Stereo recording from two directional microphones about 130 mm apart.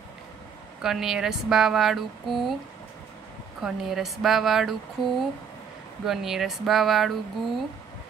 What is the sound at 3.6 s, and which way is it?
Speech, centre (ahead or behind).